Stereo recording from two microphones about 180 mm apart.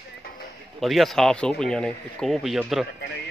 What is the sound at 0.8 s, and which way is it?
Speech, centre (ahead or behind).